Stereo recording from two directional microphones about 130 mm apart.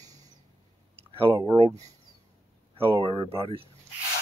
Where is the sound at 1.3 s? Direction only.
30° right (ahead or behind).